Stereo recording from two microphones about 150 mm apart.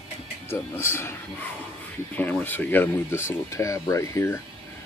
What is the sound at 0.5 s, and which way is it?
Speech, 15° left (ahead or behind).